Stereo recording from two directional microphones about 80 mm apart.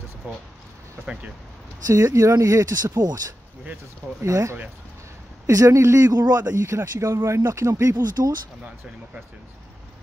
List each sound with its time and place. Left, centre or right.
0.2 s speech: centre
1.9 s speech: right
4.2 s speech: right
6.6 s speech: right